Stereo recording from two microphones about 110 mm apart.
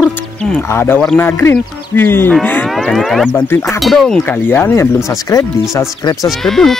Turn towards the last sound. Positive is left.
turn(degrees=5)  # may be behind; listen again after turning